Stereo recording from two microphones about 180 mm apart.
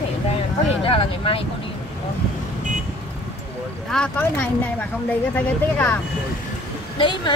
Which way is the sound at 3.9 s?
5° left (ahead or behind).